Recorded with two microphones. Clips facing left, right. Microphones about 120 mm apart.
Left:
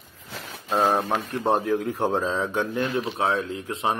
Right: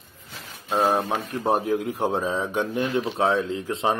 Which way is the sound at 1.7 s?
15° right (ahead or behind).